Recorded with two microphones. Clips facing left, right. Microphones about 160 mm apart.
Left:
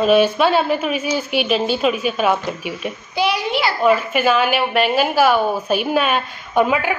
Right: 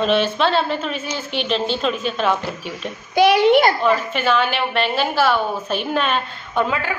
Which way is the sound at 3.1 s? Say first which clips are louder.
Right 7 dB; 60° right (ahead or behind).